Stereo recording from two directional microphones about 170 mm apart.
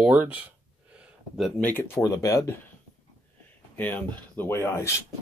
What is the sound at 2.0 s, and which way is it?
Speech, 20° left (ahead or behind).